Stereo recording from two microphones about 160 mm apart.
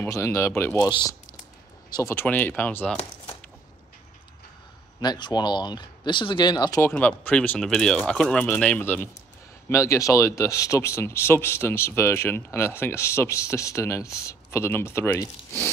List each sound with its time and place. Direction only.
0.0 s speech: 20° left (ahead or behind)
1.9 s speech: 20° left (ahead or behind)
5.0 s speech: 25° left (ahead or behind)
6.9 s speech: 10° left (ahead or behind)